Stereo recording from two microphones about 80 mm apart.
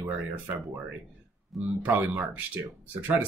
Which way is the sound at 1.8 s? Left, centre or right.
Right.